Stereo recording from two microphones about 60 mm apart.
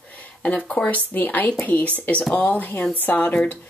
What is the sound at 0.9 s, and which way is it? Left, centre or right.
Speech, left.